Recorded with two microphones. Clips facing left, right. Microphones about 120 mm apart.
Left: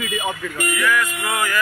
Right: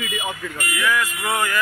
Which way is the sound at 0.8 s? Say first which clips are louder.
Even; 25° right (ahead or behind).